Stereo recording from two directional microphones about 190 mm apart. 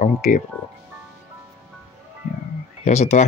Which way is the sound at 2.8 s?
35° left (ahead or behind).